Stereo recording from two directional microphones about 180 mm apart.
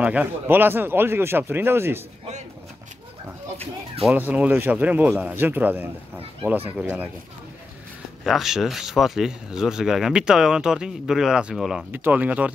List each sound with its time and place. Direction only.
0.0 s speech: 10° right (ahead or behind)
4.0 s speech: 10° right (ahead or behind)
8.2 s speech: centre (ahead or behind)